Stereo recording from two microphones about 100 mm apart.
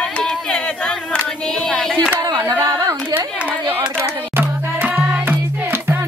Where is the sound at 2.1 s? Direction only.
40° right (ahead or behind).